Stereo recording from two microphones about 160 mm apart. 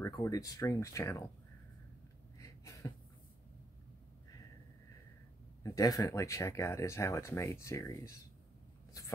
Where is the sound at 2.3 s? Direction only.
20° left (ahead or behind).